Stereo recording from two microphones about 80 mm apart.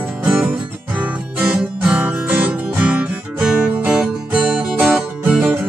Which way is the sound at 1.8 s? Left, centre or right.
Centre.